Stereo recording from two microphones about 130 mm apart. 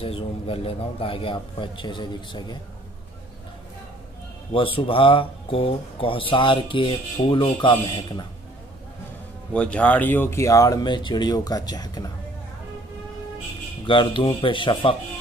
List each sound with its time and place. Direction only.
0.0 s speech: 45° left (ahead or behind)
4.5 s speech: 45° left (ahead or behind)
9.5 s speech: 10° left (ahead or behind); by 12.1 s 30° left (ahead or behind)
13.8 s speech: 40° left (ahead or behind)